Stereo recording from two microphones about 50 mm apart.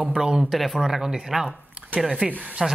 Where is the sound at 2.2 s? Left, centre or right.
Right.